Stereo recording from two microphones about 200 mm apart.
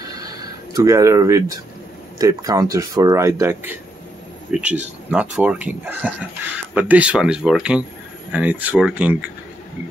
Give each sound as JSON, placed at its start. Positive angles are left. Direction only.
{"t": 0.7, "sound": "speech", "side_deg": -15}